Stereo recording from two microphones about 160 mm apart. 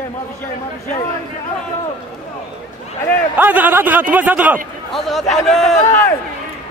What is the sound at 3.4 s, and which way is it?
Speech, 10° right (ahead or behind).